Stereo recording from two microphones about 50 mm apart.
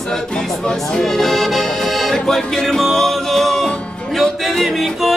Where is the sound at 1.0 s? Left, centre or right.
Centre.